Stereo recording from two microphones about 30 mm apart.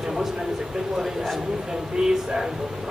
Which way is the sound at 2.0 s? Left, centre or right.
Right.